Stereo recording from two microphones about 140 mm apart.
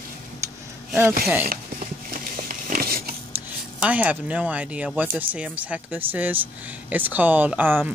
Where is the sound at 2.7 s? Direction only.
90° right.